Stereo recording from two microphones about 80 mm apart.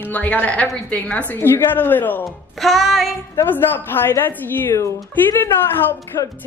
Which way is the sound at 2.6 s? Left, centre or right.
Centre.